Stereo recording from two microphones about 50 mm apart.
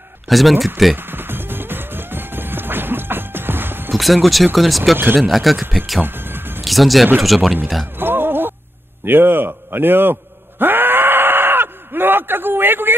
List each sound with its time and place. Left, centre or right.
0.3 s speech: centre
0.9 s music: right
3.9 s speech: centre
4.9 s speech: right
5.3 s speech: centre
6.0 s music: right
6.6 s speech: centre
8.0 s a sound: right
9.0 s a man's voice: right
10.6 s a sound: right